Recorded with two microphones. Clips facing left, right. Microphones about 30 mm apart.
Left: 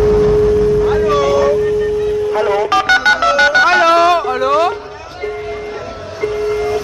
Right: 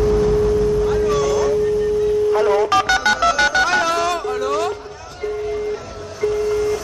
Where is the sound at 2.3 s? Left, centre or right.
Centre.